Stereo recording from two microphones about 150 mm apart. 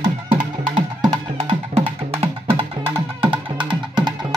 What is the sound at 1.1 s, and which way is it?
Music, 40° right (ahead or behind).